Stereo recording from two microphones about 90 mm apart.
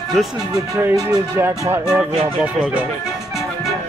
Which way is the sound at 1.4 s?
25° right (ahead or behind).